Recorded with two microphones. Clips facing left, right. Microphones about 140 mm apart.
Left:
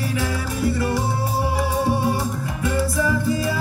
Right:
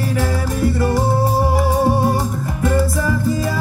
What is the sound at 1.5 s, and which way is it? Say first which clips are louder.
Music: right 5 dB; 45° right (ahead or behind).